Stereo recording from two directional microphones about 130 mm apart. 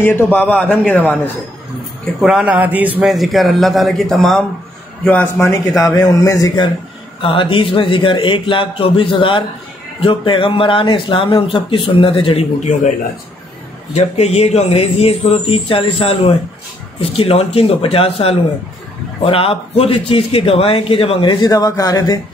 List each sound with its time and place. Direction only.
0.0 s a man's voice: 15° left (ahead or behind)
2.1 s speech: 5° right (ahead or behind)
3.1 s a man's voice: centre (ahead or behind)
5.8 s speech: 30° left (ahead or behind)
7.2 s a man's voice: 40° left (ahead or behind)
13.9 s a man's voice: 55° left (ahead or behind); by 22.2 s 30° left (ahead or behind)